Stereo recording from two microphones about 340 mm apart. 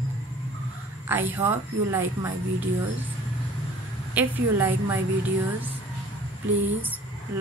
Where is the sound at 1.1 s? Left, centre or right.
Centre.